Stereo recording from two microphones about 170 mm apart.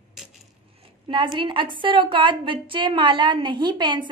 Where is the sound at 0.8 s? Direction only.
30° right (ahead or behind).